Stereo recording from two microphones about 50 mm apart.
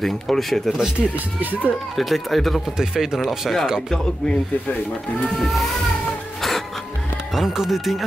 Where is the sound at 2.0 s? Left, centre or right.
Centre.